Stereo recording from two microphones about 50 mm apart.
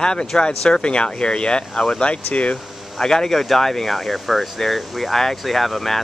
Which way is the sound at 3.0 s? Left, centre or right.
Centre.